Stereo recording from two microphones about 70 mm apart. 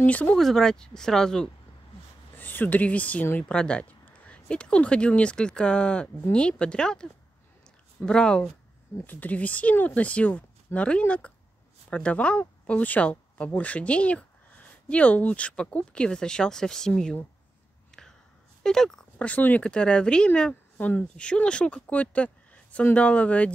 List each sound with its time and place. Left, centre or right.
0.0 s speech: left
0.4 s speech: centre
2.3 s speech: left
9.0 s speech: left; by 17.2 s centre
17.9 s a sound: centre
18.6 s speech: centre
19.1 s speech: left